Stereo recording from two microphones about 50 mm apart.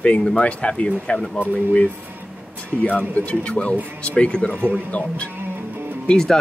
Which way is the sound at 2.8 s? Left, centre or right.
Left.